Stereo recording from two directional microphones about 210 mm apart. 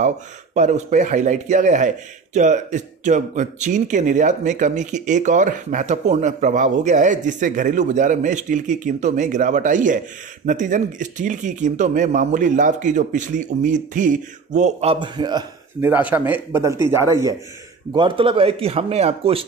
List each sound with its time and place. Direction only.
0.6 s a man's voice: 35° right (ahead or behind); by 15.9 s 20° right (ahead or behind)
15.9 s speech: 5° right (ahead or behind)
17.9 s a man's voice: 25° right (ahead or behind)